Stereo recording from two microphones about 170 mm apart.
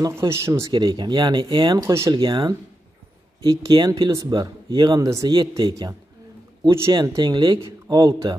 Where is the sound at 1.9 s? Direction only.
15° right (ahead or behind).